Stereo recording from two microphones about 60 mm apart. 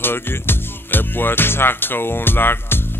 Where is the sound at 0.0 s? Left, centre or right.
Left.